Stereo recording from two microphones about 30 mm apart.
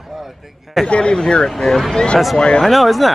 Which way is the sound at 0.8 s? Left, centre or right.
Left.